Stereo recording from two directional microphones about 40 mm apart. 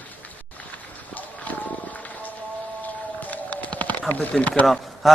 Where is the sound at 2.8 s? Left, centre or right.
Left.